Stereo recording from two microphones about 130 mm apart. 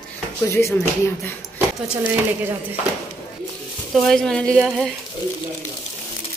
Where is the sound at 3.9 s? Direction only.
Centre (ahead or behind).